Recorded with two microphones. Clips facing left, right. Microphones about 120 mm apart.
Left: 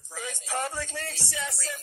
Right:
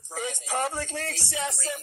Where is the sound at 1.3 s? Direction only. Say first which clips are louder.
Right 5 dB; 25° right (ahead or behind).